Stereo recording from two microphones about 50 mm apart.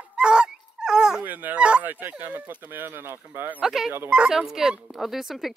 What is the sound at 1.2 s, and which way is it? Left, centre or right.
Speech, right.